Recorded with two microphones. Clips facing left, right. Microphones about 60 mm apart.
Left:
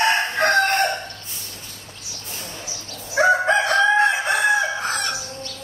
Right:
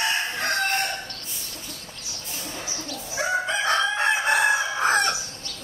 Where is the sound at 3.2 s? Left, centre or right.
Left.